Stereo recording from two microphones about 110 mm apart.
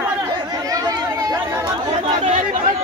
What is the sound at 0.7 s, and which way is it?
Chatter, 30° right (ahead or behind).